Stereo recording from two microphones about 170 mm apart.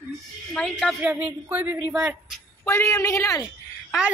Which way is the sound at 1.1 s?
10° right (ahead or behind).